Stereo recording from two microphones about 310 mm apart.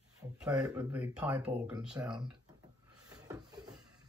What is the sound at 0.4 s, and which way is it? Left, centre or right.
Speech, centre.